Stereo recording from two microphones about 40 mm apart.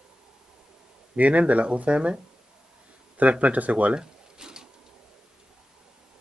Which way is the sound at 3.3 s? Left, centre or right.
Right.